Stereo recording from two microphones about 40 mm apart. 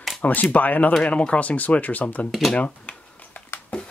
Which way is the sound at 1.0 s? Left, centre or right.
Left.